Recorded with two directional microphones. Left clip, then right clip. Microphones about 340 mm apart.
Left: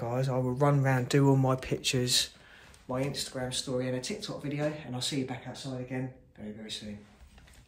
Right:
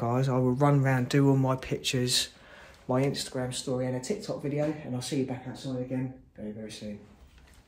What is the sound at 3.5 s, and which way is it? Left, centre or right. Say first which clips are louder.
Speech: left 1 dB; centre.